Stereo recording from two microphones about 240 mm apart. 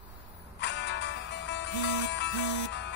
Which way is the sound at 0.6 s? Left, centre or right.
Left.